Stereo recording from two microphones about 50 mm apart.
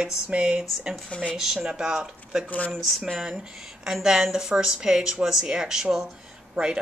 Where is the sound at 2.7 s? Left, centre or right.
Centre.